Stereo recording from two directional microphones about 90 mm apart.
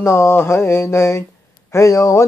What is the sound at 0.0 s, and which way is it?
Mantra, 30° left (ahead or behind).